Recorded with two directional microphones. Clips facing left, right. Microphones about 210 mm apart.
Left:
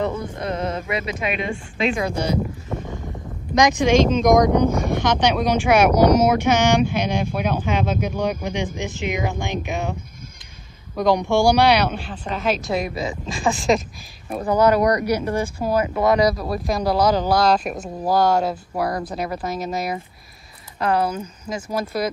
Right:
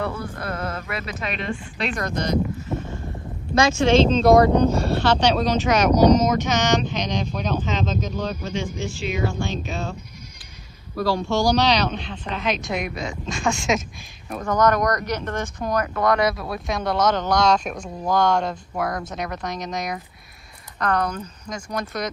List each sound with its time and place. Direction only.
0.0 s a sound: 20° left (ahead or behind)
1.3 s speech: 5° left (ahead or behind)
3.5 s speech: 15° left (ahead or behind)
11.0 s speech: 20° left (ahead or behind)